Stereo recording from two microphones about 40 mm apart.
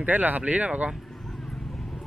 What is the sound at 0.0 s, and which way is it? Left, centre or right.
Speech, right.